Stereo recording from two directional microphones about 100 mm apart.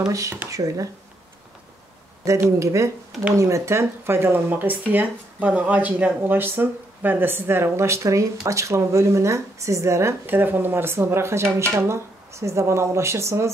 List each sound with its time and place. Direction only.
0.0 s speech: 30° right (ahead or behind)
2.2 s speech: 30° right (ahead or behind)